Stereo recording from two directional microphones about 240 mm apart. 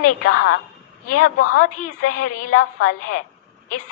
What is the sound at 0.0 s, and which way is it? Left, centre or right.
A woman's voice, left.